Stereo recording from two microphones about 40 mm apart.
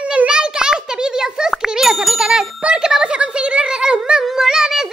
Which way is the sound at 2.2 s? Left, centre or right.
Centre.